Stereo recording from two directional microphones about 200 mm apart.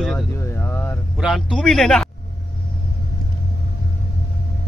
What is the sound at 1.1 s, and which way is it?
Speech, centre (ahead or behind).